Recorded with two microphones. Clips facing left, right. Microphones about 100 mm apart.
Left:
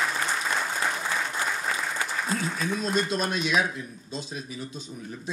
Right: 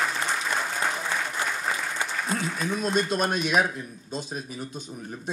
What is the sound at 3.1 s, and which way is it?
Speech, 50° right (ahead or behind).